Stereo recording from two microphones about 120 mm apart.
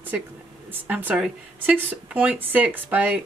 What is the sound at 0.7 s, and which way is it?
Speech, 15° right (ahead or behind).